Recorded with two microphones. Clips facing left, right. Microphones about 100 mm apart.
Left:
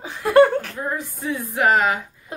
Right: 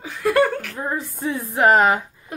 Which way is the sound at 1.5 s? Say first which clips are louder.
Right 3 dB; 35° right (ahead or behind).